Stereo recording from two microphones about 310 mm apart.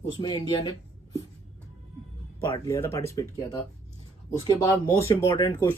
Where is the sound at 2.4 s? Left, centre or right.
Centre.